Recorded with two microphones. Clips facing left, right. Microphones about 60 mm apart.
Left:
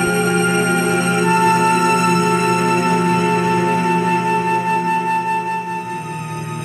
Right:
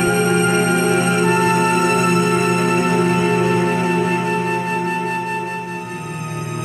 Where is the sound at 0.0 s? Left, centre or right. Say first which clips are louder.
Even; centre.